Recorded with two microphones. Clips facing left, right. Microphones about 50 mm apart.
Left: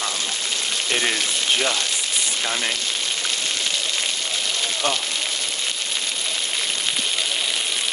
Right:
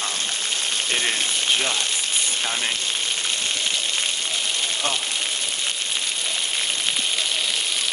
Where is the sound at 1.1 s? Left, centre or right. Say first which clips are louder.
Left 1 dB; right.